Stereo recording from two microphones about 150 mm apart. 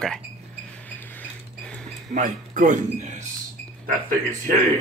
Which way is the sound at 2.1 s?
55° right (ahead or behind).